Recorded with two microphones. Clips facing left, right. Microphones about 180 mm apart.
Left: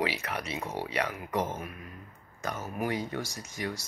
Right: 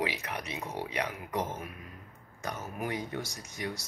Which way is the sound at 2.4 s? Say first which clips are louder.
Left 3 dB; 20° right (ahead or behind).